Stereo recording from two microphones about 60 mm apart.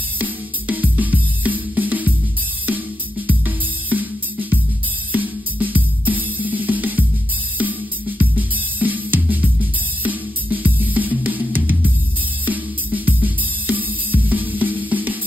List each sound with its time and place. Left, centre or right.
0.2 s music: right
3.3 s music: right
8.2 s music: right